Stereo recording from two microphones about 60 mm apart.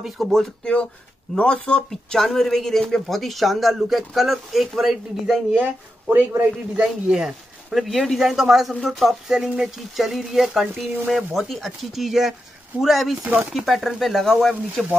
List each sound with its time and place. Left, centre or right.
0.2 s speech: centre
1.3 s speech: centre
6.0 s speech: right
6.8 s speech: centre
13.2 s speech: right
13.5 s speech: centre